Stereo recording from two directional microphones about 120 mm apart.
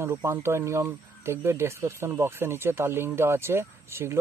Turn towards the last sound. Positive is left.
turn(degrees=-20)  # may be behind; listen again after turning